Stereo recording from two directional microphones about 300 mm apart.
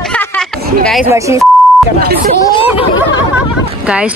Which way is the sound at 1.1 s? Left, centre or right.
Centre.